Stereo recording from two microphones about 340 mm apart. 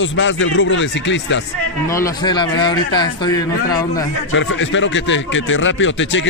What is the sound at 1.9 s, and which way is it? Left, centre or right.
Speech, centre.